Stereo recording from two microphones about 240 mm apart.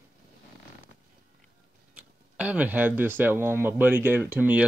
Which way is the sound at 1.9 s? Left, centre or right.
Centre.